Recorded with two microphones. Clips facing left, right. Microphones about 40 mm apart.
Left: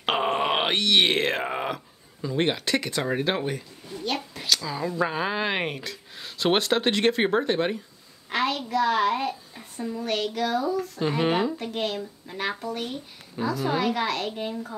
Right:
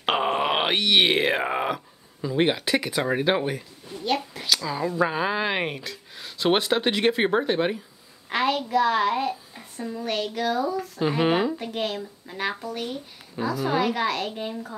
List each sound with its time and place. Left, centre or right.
0.0 s groan: centre
2.2 s speech: centre